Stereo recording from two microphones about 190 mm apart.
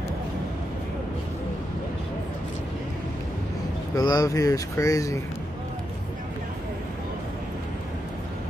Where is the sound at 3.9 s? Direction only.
20° left (ahead or behind).